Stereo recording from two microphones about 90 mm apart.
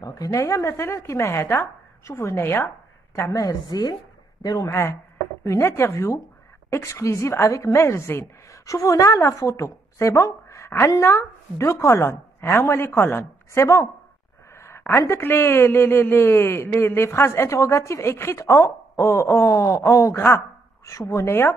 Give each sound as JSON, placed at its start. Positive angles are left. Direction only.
{"t": 0.0, "sound": "speech", "side_deg": 40}
{"t": 3.4, "sound": "a woman's voice", "side_deg": 45}
{"t": 4.6, "sound": "a man's voice", "side_deg": 25}